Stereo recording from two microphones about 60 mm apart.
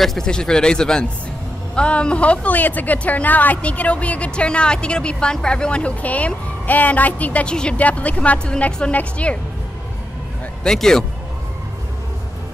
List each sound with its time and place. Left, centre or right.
0.0 s speech: centre
10.6 s speech: centre